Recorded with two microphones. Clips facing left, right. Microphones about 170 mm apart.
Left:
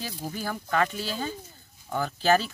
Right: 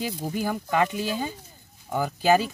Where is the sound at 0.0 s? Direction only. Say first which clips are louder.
Right 5 dB; 15° right (ahead or behind).